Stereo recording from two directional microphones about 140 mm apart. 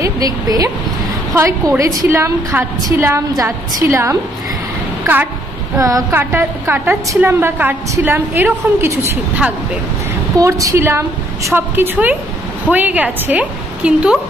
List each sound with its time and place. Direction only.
0.0 s a woman's voice: 25° right (ahead or behind)
5.8 s a woman's voice: 25° right (ahead or behind)
10.3 s a woman's voice: 25° right (ahead or behind); by 14.2 s 5° right (ahead or behind)